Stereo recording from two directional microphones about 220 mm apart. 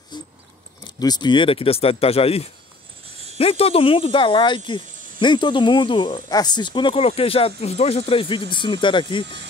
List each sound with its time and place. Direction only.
0.8 s speech: 20° left (ahead or behind)